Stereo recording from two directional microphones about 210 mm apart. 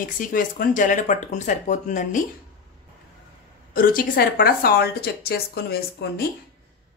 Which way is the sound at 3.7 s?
45° left (ahead or behind).